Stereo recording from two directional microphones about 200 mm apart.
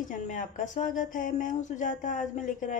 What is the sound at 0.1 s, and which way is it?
Speech, 40° left (ahead or behind).